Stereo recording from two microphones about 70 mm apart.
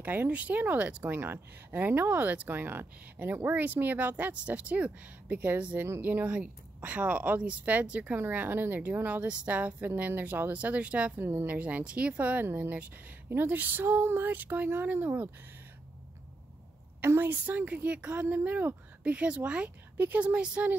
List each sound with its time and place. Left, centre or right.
0.0 s a woman's voice: right
6.2 s speech: centre
8.2 s speech: right
11.1 s speech: right
17.0 s speech: right